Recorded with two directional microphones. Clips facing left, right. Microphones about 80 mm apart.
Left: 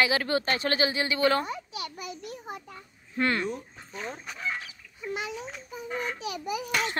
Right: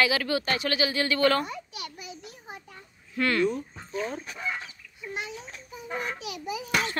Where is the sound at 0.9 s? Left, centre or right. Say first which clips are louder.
Right 1 dB; centre.